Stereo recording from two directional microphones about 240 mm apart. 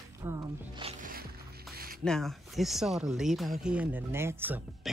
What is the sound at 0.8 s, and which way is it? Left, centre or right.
Music, right.